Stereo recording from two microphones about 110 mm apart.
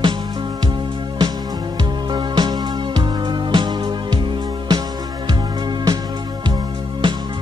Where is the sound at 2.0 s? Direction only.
40° right (ahead or behind).